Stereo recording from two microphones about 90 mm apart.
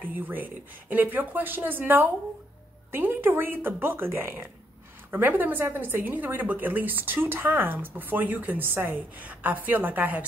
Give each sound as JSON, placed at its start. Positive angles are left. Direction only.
{"t": 0.0, "sound": "a woman's voice", "side_deg": -20}